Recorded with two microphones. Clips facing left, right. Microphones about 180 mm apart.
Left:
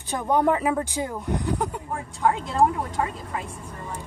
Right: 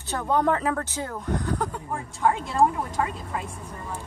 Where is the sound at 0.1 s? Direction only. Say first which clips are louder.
Left 2 dB; 15° left (ahead or behind).